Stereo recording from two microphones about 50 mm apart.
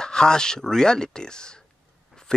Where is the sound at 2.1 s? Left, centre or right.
Centre.